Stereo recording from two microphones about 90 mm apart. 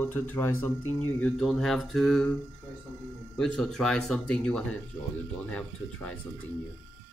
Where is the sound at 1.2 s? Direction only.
5° left (ahead or behind).